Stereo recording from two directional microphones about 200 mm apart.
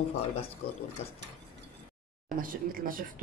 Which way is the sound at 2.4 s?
45° right (ahead or behind).